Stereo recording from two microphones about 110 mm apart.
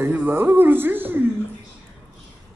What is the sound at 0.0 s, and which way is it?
Speech, 20° right (ahead or behind).